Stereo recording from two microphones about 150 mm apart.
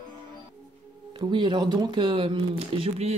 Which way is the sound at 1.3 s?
30° right (ahead or behind).